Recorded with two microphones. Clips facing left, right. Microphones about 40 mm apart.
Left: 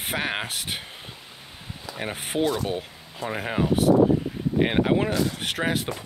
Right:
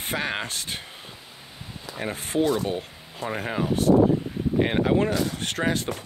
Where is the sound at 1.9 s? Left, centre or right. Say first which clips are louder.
Right 2 dB; centre.